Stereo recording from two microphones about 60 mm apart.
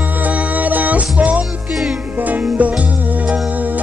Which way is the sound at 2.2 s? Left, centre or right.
Right.